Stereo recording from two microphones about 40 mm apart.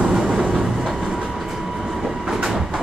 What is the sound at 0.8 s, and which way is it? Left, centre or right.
Train, centre.